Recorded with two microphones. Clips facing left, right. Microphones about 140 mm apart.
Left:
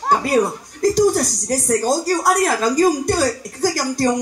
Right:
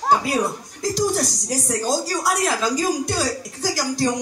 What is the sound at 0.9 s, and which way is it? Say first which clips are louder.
Speech: left 4 dB; 50° left (ahead or behind).